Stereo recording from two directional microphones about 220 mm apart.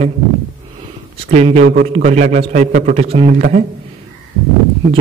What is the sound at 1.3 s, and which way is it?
Speech, 30° right (ahead or behind).